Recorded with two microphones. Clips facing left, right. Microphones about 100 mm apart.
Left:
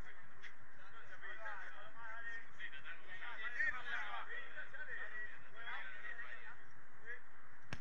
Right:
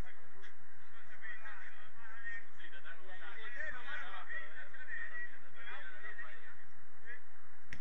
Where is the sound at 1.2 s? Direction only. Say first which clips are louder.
Left 2 dB; 45° left (ahead or behind).